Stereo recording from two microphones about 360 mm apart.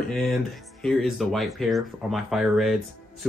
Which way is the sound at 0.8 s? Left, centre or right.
Centre.